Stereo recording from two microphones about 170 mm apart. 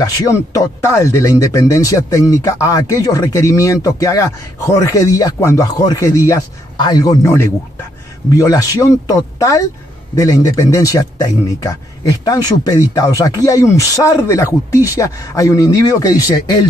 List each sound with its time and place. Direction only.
0.0 s speech: 20° left (ahead or behind)
8.4 s speech: 20° left (ahead or behind)